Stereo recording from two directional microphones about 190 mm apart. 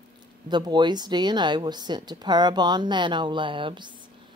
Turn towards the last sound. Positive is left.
turn(degrees=-25)  # may be behind; listen again after turning